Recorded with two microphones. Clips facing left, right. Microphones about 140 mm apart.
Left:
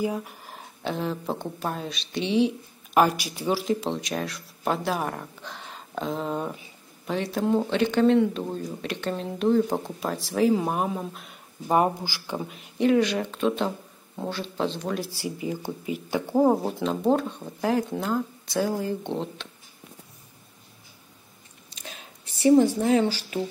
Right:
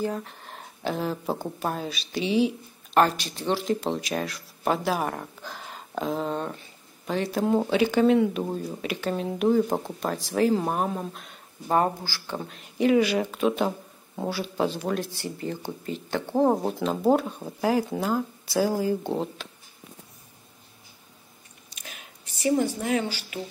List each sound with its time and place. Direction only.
0.0 s speech: 10° left (ahead or behind)
3.0 s speech: 10° left (ahead or behind)
11.7 s speech: 15° left (ahead or behind); by 15.0 s 5° right (ahead or behind)
15.0 s speech: 10° left (ahead or behind)
21.6 s a sound: 30° left (ahead or behind)